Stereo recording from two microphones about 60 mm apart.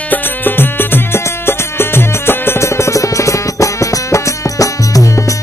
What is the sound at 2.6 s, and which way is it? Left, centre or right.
Music, left.